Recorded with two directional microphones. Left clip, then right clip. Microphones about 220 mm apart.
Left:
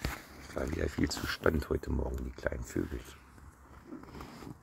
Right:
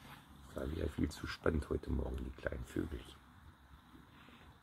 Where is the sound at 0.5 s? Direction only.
25° left (ahead or behind).